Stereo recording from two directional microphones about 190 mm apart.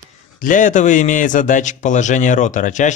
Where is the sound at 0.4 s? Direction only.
40° left (ahead or behind).